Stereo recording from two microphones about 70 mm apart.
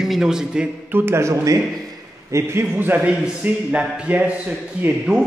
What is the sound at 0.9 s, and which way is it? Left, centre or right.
Speech, right.